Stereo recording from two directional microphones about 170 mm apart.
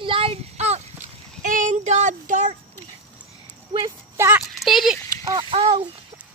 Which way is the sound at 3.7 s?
20° right (ahead or behind).